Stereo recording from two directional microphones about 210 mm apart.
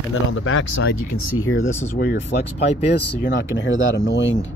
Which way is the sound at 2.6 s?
30° left (ahead or behind).